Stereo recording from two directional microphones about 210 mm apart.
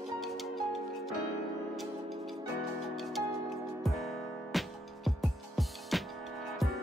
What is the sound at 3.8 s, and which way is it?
Music, centre (ahead or behind).